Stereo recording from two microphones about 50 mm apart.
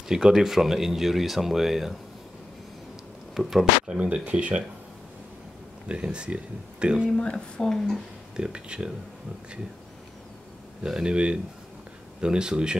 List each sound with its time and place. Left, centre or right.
0.1 s speech: centre
3.3 s speech: centre
3.8 s speech: centre
5.9 s speech: right
7.2 s speech: centre
7.6 s speech: centre
8.4 s speech: centre
10.9 s speech: centre